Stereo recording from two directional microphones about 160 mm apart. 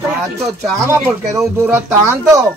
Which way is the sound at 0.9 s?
20° right (ahead or behind).